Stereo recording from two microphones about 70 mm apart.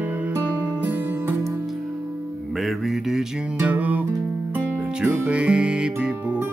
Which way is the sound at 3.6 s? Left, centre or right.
Right.